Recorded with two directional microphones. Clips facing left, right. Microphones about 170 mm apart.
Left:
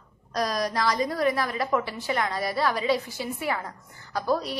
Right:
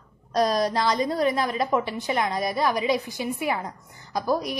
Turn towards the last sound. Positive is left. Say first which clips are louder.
# right 1 dB
turn(degrees=-15)  # may be behind; listen again after turning